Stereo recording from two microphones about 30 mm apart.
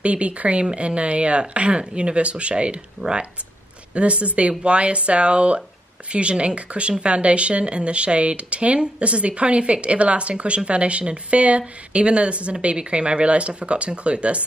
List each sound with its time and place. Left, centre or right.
0.0 s speech: right
3.9 s speech: right